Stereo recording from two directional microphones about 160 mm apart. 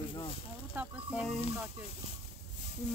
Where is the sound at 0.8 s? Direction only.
10° right (ahead or behind).